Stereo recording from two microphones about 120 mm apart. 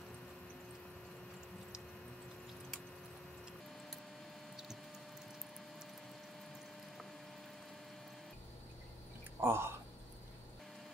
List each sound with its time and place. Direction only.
9.4 s speech: 20° right (ahead or behind)